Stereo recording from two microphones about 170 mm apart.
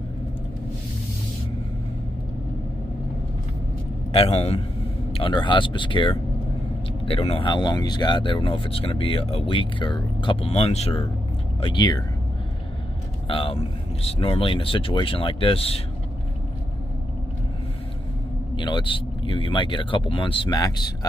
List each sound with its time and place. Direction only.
4.1 s speech: 35° left (ahead or behind)
11.6 s speech: 25° left (ahead or behind)
13.3 s speech: 30° left (ahead or behind)
18.6 s speech: 30° left (ahead or behind)